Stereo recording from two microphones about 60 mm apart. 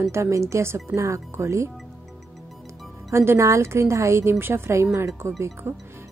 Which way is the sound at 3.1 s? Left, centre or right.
Right.